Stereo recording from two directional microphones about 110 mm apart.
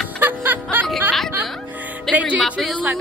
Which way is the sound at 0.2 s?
15° right (ahead or behind).